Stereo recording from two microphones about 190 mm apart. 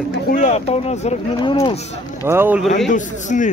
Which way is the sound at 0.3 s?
40° left (ahead or behind).